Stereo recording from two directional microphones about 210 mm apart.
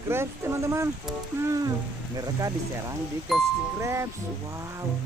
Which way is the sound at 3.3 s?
Centre (ahead or behind).